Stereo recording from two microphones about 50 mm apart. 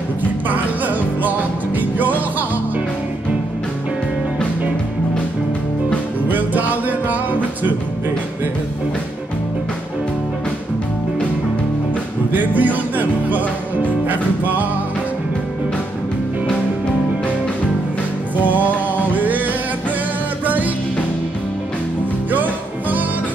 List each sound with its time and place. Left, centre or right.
0.5 s music: right
6.2 s music: right
12.3 s music: right
19.1 s music: right
22.3 s music: right